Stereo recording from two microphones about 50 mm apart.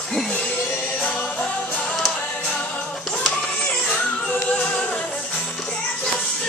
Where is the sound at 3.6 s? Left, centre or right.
Left.